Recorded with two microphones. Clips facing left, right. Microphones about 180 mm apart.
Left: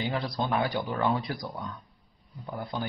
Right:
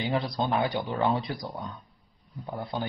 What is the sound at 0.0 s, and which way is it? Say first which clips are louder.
Speech: right 2 dB; 20° right (ahead or behind).